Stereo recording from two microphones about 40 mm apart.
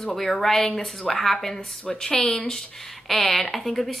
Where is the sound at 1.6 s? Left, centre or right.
Left.